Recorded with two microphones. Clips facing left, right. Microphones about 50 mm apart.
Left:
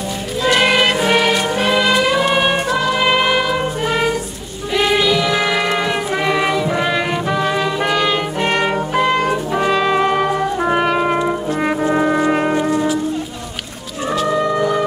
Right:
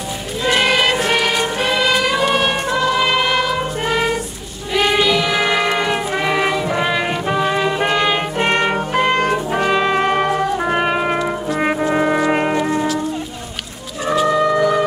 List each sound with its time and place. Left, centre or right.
0.6 s music: centre
4.7 s music: centre; by 8.8 s right
9.0 s music: right
9.3 s music: right
10.6 s music: centre